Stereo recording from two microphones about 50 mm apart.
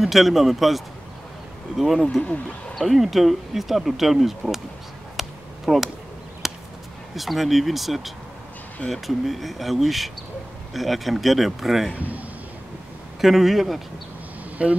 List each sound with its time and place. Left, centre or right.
0.0 s speech: centre
5.7 s speech: centre
6.4 s chop: centre
7.2 s speech: centre
13.2 s speech: centre
14.6 s speech: right